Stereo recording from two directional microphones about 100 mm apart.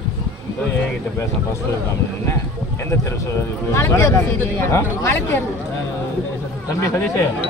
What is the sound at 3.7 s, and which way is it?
Speech, 25° left (ahead or behind).